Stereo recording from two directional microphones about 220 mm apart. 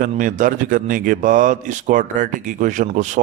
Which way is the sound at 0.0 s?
40° right (ahead or behind).